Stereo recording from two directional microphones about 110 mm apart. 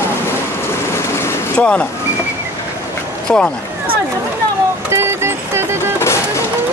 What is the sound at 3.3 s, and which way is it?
Speech, 10° left (ahead or behind).